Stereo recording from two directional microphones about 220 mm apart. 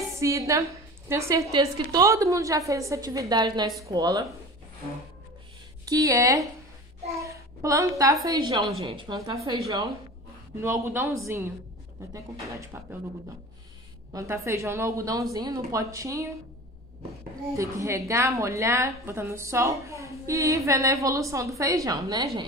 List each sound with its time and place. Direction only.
0.0 s a woman's voice: 15° right (ahead or behind)
5.9 s a woman's voice: 15° right (ahead or behind)
14.1 s a woman's voice: 15° right (ahead or behind)
17.6 s a woman's voice: 15° right (ahead or behind)